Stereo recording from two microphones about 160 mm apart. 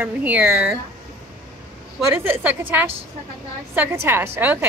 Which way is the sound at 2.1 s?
10° right (ahead or behind).